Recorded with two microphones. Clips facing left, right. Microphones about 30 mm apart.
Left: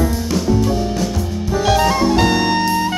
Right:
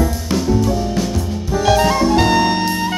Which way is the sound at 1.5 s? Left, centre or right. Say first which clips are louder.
Right 1 dB; centre.